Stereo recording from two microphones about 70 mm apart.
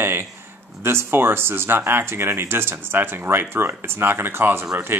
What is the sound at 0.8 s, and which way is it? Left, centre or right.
Speech, right.